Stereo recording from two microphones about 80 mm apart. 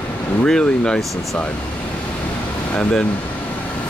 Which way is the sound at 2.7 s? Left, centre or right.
Centre.